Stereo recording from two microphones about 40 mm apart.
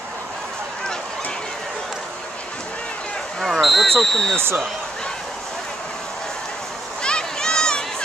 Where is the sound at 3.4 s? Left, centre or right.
Centre.